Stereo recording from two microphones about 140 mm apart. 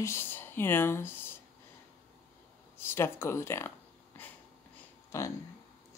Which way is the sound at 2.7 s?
15° left (ahead or behind).